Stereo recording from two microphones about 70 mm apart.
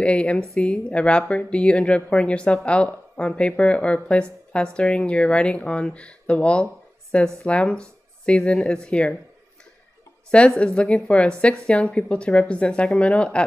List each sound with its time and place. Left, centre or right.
0.0 s speech: centre
10.3 s speech: centre